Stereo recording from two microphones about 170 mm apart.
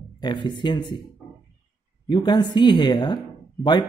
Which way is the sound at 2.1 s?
25° left (ahead or behind).